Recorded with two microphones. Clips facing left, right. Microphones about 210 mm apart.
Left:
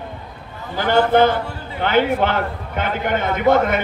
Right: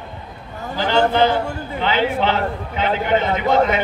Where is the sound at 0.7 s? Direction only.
50° left (ahead or behind).